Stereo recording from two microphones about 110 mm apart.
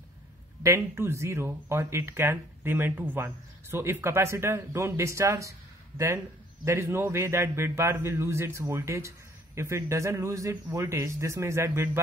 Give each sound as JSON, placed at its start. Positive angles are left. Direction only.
{"t": 0.7, "sound": "speech", "side_deg": -20}